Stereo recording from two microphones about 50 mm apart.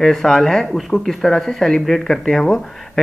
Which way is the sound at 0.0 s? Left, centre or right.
Centre.